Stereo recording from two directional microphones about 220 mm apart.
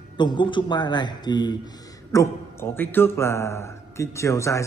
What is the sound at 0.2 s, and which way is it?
A man's voice, 20° left (ahead or behind).